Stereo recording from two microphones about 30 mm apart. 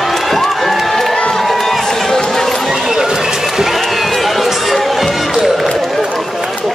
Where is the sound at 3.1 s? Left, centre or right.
Centre.